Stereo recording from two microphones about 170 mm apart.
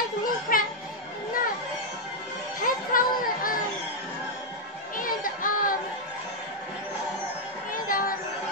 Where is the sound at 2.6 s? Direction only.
55° left (ahead or behind).